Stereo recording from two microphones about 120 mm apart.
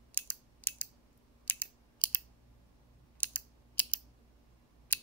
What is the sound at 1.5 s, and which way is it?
Computer keyboard, 15° left (ahead or behind).